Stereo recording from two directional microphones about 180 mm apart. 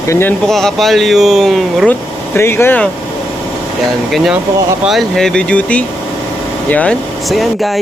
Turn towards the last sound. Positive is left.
turn(degrees=0)  # may be behind; listen again after turning